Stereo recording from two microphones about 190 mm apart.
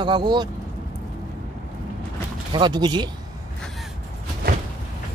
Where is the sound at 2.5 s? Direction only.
25° right (ahead or behind).